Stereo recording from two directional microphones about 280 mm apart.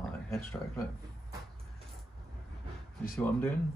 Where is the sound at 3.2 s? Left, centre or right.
Centre.